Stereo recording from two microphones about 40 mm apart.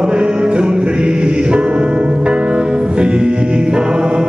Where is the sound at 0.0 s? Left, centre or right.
Right.